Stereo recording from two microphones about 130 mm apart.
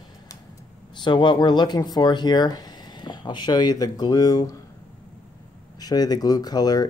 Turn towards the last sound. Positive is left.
turn(degrees=30)  # may be behind; listen again after turning